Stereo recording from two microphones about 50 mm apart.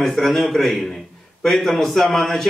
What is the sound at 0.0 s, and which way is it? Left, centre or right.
A man's voice, centre.